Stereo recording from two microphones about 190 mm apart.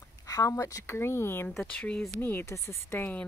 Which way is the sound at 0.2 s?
15° left (ahead or behind).